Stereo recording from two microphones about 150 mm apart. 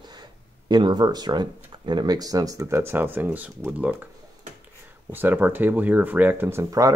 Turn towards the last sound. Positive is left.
turn(degrees=-20)  # may be behind; listen again after turning